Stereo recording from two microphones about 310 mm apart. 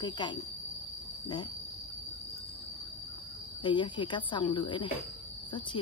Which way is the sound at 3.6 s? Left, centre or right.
Centre.